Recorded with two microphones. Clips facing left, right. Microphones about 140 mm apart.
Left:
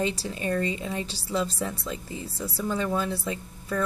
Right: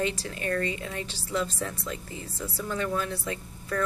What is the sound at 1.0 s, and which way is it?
Speech, 35° left (ahead or behind).